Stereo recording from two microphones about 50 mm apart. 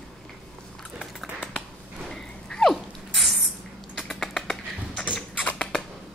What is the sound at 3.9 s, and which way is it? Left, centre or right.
Typing, centre.